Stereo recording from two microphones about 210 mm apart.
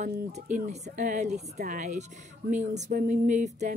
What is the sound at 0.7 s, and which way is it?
A woman's voice, 35° right (ahead or behind).